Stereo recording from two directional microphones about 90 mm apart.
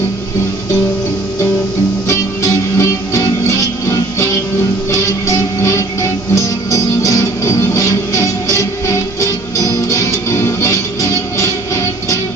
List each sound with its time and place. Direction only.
2.8 s music: 30° left (ahead or behind)
6.3 s music: 35° left (ahead or behind)